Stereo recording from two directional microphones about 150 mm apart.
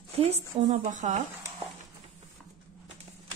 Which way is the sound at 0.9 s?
50° right (ahead or behind).